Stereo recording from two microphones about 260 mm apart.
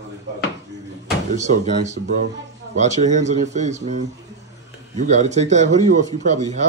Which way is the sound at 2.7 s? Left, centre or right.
Right.